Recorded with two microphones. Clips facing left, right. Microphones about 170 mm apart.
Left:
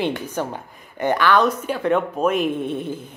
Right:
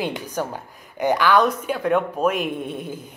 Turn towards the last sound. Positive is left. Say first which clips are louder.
# left 4 dB
turn(degrees=-10)  # may be behind; listen again after turning